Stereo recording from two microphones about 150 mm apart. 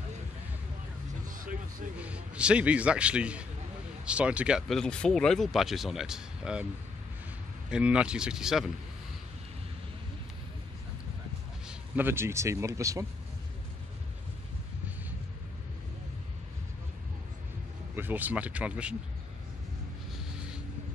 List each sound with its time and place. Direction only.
1.3 s music: 65° right (ahead or behind)
2.0 s a man's voice: 10° right (ahead or behind)
7.7 s speech: 5° right (ahead or behind)
11.6 s speech: 10° right (ahead or behind)
17.9 s speech: 15° right (ahead or behind)